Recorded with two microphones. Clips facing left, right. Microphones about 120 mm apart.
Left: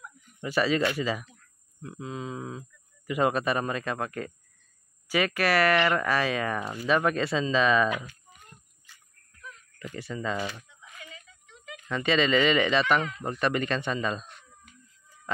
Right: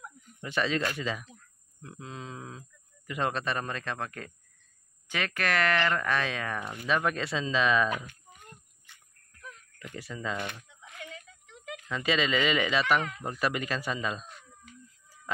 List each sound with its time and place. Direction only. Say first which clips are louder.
0.4 s speech: left 4 dB; 5° left (ahead or behind)
8.8 s dog: left 1 dB; 60° right (ahead or behind)
9.8 s speech: left 5 dB; centre (ahead or behind)
10.4 s a sound: left 3 dB; 60° right (ahead or behind)
11.9 s speech: left 4 dB; centre (ahead or behind)
13.2 s a sound: left 3 dB; 5° right (ahead or behind)